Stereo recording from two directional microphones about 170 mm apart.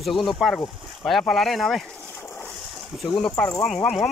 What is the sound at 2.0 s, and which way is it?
Splash, 15° left (ahead or behind).